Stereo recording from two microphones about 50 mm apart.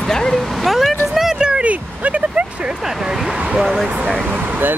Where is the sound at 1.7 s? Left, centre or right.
Right.